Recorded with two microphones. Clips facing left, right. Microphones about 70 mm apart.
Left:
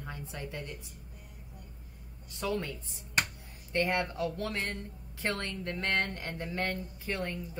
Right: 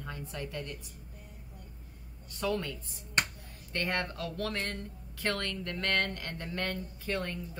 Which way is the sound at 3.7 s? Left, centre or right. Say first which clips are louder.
Left 3 dB; centre.